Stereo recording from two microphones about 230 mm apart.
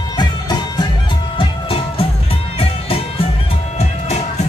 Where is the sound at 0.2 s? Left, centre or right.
Centre.